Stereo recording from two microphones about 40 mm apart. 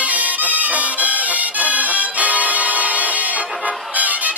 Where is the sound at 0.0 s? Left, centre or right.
Right.